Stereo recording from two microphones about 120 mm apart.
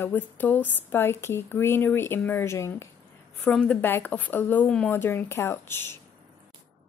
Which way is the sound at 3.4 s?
5° left (ahead or behind).